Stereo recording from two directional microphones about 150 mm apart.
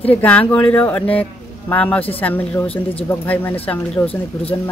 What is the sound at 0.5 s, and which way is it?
Speech, 10° left (ahead or behind).